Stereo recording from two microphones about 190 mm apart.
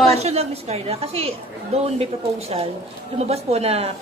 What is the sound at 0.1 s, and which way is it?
A woman's voice, 35° right (ahead or behind).